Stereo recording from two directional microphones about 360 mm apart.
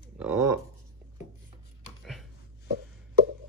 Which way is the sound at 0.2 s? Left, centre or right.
Centre.